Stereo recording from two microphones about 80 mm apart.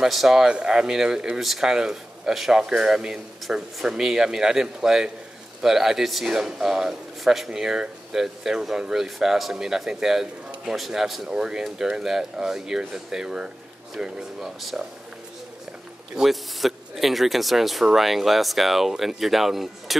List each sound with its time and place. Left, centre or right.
0.0 s speech: centre
16.2 s speech: centre